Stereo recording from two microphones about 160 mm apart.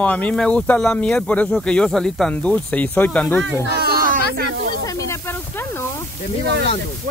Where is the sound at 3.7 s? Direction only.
70° right (ahead or behind).